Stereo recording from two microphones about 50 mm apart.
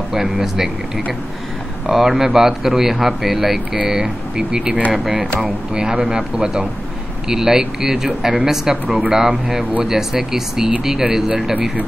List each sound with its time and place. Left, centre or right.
0.1 s speech: centre
4.9 s speech: centre